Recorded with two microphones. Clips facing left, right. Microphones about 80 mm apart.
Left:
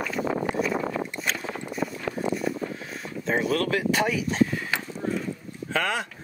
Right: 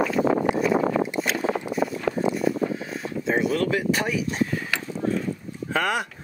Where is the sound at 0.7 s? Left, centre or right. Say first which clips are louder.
Right 6 dB; right.